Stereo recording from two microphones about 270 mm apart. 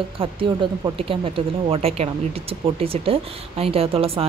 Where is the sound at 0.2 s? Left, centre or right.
Centre.